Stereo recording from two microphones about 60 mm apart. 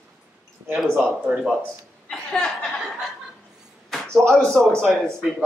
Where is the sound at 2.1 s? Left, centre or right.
Centre.